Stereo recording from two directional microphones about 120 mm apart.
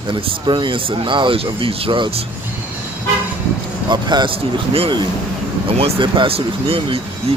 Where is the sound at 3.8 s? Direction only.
35° right (ahead or behind).